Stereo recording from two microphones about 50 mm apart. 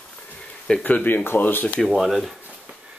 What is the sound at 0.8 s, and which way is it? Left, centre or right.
Speech, left.